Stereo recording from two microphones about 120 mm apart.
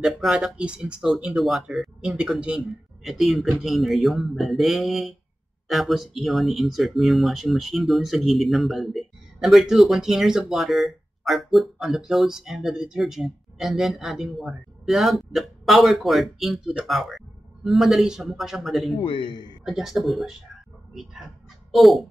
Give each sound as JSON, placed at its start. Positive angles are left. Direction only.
{"t": 0.2, "sound": "speech", "side_deg": -5}
{"t": 18.9, "sound": "a man's voice", "side_deg": 40}
{"t": 19.6, "sound": "speech", "side_deg": -5}